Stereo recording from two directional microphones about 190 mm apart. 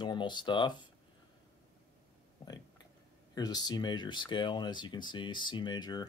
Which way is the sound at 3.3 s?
20° left (ahead or behind).